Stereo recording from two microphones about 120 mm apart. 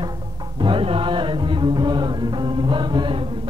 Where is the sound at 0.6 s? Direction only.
45° right (ahead or behind).